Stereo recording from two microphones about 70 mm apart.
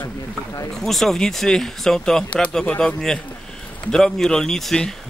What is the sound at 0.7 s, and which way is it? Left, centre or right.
Speech, centre.